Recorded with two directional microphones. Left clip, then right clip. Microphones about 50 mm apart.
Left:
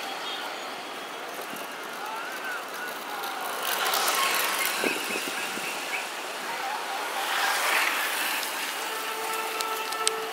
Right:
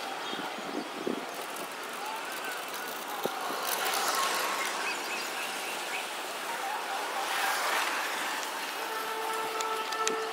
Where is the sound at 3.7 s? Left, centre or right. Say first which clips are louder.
Left 5 dB; left.